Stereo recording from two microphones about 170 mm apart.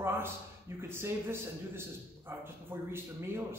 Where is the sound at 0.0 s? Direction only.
15° right (ahead or behind).